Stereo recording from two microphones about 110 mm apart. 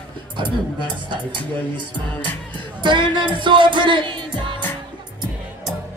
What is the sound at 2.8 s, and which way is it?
Music, 45° right (ahead or behind).